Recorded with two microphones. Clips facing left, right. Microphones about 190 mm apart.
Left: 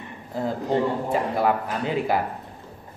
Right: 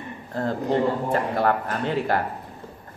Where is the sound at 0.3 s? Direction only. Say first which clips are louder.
Right 1 dB; 5° left (ahead or behind).